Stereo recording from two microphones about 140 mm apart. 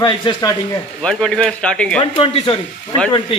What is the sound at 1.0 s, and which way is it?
Speech, 5° left (ahead or behind).